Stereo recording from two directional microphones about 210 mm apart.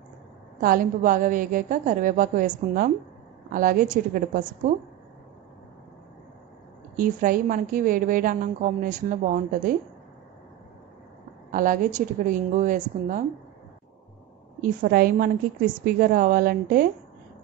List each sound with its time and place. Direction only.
0.6 s a woman's voice: 40° right (ahead or behind)
3.5 s a woman's voice: 40° right (ahead or behind)
7.0 s a woman's voice: 40° right (ahead or behind)
11.5 s a woman's voice: 40° right (ahead or behind)
14.6 s a woman's voice: 40° right (ahead or behind)